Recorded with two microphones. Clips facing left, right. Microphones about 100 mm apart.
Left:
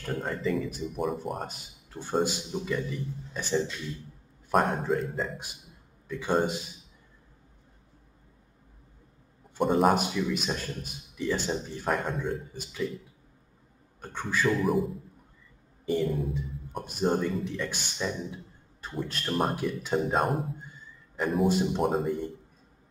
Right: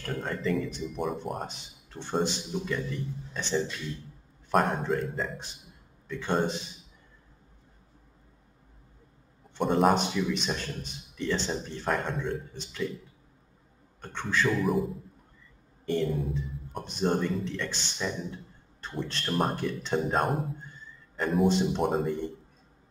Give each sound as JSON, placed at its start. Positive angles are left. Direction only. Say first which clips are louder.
{"t": 0.0, "sound": "a man's voice", "louder": "left 1 dB", "side_deg": 5}
{"t": 9.6, "sound": "a man's voice", "louder": "even", "side_deg": 0}
{"t": 14.0, "sound": "a man's voice", "louder": "even", "side_deg": 5}